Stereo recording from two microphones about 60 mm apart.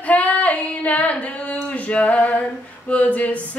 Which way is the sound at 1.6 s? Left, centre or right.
Left.